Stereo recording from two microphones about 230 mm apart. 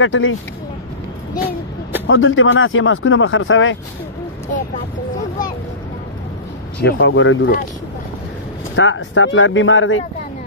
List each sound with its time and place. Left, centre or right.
0.0 s speech: left
2.0 s speech: left
6.8 s speech: left
8.7 s speech: left